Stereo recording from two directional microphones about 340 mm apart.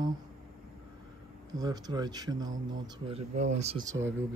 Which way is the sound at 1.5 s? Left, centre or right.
Centre.